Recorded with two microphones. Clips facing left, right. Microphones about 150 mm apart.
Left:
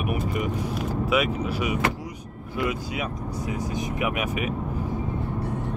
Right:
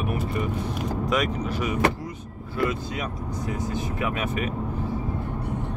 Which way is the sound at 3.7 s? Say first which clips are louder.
Left 1 dB; 15° left (ahead or behind).